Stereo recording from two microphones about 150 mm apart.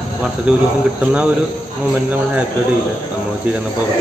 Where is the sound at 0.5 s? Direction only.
5° right (ahead or behind).